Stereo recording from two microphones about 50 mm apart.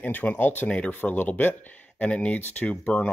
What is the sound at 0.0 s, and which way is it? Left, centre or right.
Speech, left.